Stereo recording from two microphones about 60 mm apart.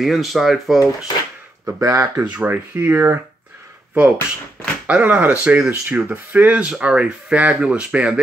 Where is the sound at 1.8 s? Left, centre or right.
Right.